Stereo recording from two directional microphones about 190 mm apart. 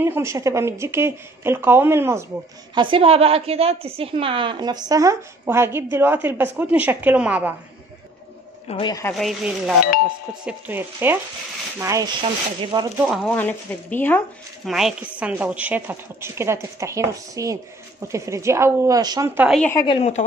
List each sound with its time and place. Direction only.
0.0 s a woman's voice: 15° right (ahead or behind)
2.7 s a woman's voice: 25° right (ahead or behind); by 7.5 s 5° right (ahead or behind)
8.6 s speech: 25° left (ahead or behind)
9.1 s a woman's voice: centre (ahead or behind); by 13.1 s 15° right (ahead or behind)
13.1 s speech: 5° left (ahead or behind)
14.7 s a woman's voice: centre (ahead or behind)
19.6 s speech: 15° left (ahead or behind)
19.9 s speech: 35° left (ahead or behind)